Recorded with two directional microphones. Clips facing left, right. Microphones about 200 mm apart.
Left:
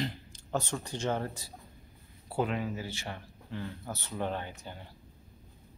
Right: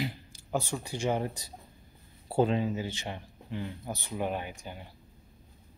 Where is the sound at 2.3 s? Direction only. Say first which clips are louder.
Right 5 dB; 30° right (ahead or behind).